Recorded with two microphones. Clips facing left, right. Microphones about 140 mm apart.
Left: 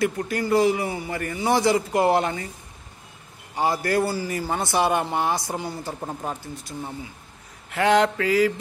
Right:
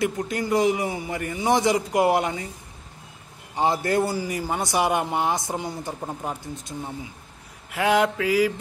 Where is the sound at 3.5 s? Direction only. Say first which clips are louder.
Even; 20° right (ahead or behind).